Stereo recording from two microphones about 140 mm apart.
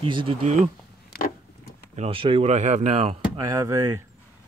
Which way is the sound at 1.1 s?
90° left.